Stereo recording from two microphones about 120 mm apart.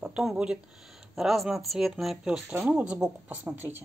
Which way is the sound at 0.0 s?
5° right (ahead or behind).